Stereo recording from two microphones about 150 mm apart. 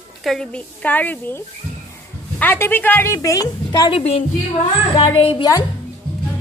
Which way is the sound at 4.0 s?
45° left (ahead or behind).